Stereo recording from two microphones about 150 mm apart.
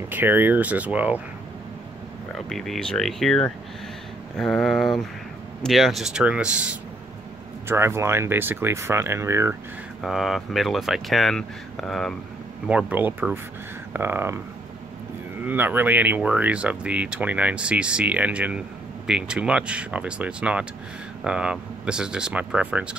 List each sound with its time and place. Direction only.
0.1 s speech: 15° right (ahead or behind)
2.3 s speech: centre (ahead or behind); by 9.6 s 15° right (ahead or behind)
10.0 s speech: centre (ahead or behind)
12.6 s speech: 10° right (ahead or behind)
15.4 s speech: 10° right (ahead or behind)